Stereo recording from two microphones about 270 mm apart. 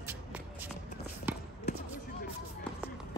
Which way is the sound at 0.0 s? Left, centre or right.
Centre.